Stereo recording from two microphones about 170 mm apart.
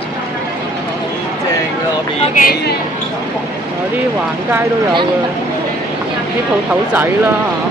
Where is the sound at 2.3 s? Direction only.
65° left (ahead or behind).